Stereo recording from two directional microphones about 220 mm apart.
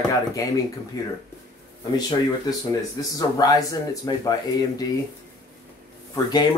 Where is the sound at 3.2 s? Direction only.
20° left (ahead or behind).